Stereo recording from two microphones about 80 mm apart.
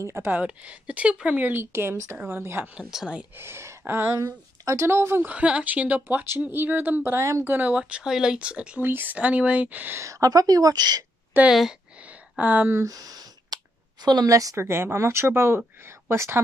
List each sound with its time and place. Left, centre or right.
0.0 s speech: right
0.3 s speech: centre
2.7 s speech: centre
3.3 s speech: right
4.2 s speech: right
5.3 s speech: centre
9.9 s a woman's voice: right
11.3 s speech: right
12.0 s a sound: centre
12.7 s a sound: right
14.0 s a woman's voice: right
14.3 s a woman's voice: right
14.6 s speech: right